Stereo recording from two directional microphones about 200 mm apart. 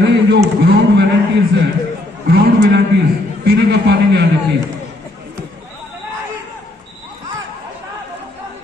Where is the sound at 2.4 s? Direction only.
55° right (ahead or behind).